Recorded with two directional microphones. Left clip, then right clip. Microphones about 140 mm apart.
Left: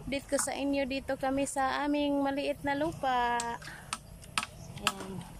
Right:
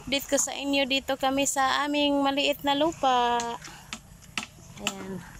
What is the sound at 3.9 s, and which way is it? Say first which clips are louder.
Typing: even; 65° right (ahead or behind).